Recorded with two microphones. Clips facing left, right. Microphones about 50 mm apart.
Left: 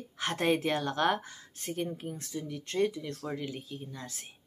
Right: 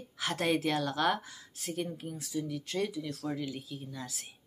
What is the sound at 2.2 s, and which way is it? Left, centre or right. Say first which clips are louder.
A woman's voice: right 3 dB; left.